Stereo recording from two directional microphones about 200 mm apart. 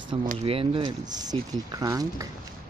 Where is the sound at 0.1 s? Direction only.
25° right (ahead or behind).